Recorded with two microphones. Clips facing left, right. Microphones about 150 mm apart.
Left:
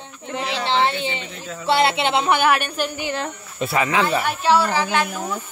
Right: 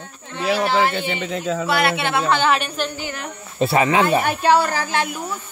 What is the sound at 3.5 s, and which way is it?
Speech, 30° right (ahead or behind).